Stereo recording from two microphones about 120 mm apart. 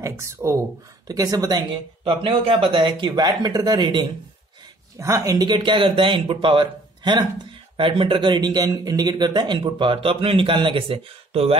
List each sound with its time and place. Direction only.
0.0 s speech: 25° right (ahead or behind)
2.0 s speech: 50° right (ahead or behind)
4.9 s speech: 25° right (ahead or behind); by 11.5 s 50° right (ahead or behind)